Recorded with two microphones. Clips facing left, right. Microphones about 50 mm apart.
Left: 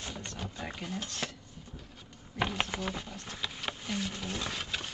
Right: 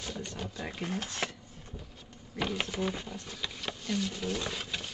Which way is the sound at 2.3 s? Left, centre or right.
Centre.